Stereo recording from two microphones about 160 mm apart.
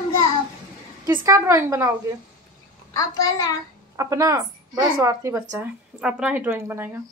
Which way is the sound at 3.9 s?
20° right (ahead or behind).